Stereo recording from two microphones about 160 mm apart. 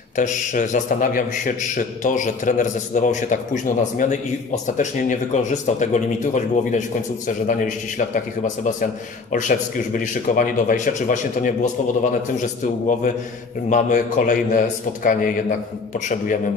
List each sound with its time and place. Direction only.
0.1 s a man's voice: 50° left (ahead or behind)
5.3 s a man's voice: 45° left (ahead or behind)
9.3 s speech: 55° left (ahead or behind)
13.7 s a man's voice: 50° left (ahead or behind)